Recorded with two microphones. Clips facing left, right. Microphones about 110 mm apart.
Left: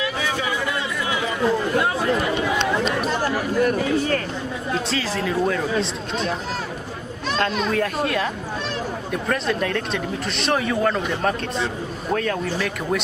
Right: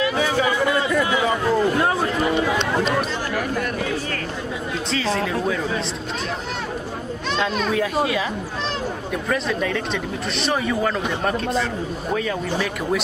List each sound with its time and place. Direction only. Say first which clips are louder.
0.0 s chatter: right 5 dB; 50° right (ahead or behind)
4.9 s speech: right 4 dB; centre (ahead or behind)
7.3 s speech: even; centre (ahead or behind)